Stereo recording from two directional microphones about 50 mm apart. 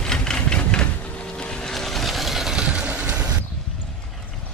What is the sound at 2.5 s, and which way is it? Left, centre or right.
Vehicle, centre.